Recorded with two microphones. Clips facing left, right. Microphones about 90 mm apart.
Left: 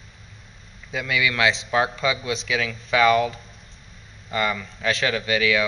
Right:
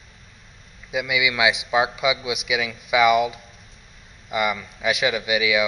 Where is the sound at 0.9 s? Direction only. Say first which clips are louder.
Right 1 dB; 15° right (ahead or behind).